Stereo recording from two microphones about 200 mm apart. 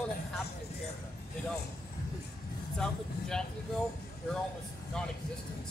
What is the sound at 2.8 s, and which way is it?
Speech, 5° left (ahead or behind).